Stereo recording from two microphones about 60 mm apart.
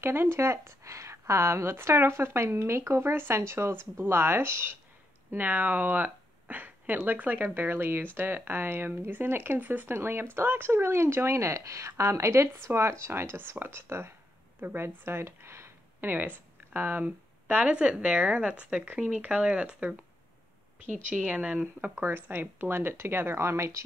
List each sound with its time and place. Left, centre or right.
0.0 s speech: right
5.3 s speech: right
9.9 s speech: right
16.1 s speech: right
21.1 s speech: centre
22.0 s speech: right